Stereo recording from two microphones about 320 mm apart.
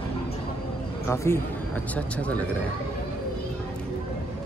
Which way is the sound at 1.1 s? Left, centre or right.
Centre.